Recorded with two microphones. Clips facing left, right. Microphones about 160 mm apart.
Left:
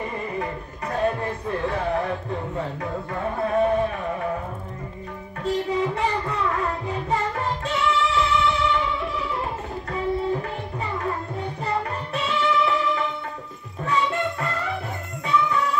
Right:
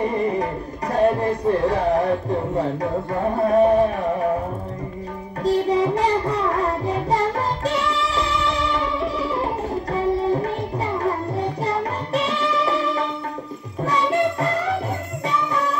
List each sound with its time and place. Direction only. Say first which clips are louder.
0.0 s music: right 8 dB; 35° right (ahead or behind)
0.9 s speech: right 6 dB; 35° right (ahead or behind)
5.4 s child singing: right 5 dB; 35° right (ahead or behind)
9.0 s music: right 5 dB; 35° right (ahead or behind)